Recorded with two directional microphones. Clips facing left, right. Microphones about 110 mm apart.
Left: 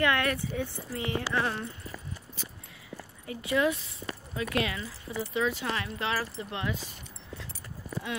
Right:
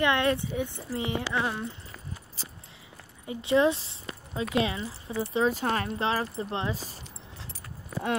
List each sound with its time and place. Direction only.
0.0 s speech: 20° right (ahead or behind)
3.3 s speech: 25° right (ahead or behind)